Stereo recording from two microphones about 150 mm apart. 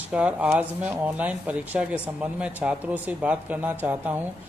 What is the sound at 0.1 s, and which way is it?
Speech, 10° right (ahead or behind).